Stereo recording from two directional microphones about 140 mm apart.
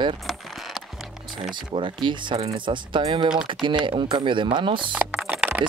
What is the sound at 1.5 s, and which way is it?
Speech, 35° right (ahead or behind).